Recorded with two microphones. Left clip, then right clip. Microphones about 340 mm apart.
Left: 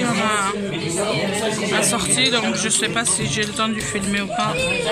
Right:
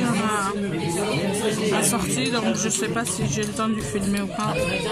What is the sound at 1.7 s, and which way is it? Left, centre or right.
Speech, centre.